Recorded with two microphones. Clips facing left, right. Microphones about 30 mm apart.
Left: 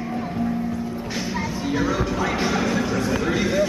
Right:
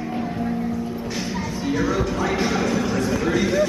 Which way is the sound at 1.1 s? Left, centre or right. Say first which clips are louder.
Even; centre.